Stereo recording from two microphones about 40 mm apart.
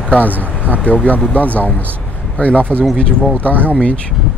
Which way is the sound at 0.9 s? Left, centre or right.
Left.